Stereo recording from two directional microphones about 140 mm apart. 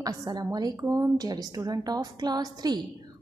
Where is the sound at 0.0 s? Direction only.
25° right (ahead or behind).